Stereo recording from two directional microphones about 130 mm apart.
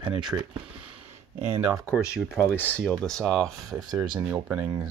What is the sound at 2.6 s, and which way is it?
Speech, 10° left (ahead or behind).